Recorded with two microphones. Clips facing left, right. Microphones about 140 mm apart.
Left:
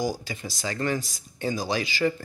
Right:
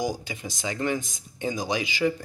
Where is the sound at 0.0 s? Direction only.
15° right (ahead or behind).